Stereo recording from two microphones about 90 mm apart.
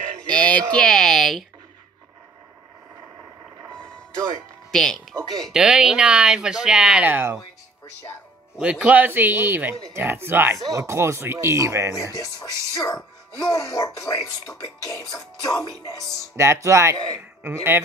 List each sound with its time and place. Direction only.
0.3 s a sound: 15° left (ahead or behind)
0.7 s speech: 5° left (ahead or behind)
3.7 s music: 10° left (ahead or behind)
4.6 s speech: 5° left (ahead or behind)
5.5 s speech: 5° right (ahead or behind)
7.1 s a man's voice: 25° right (ahead or behind)
8.5 s a man's voice: 10° right (ahead or behind); by 11.9 s 35° right (ahead or behind)
12.0 s speech: 40° left (ahead or behind)
16.3 s speech: 35° right (ahead or behind)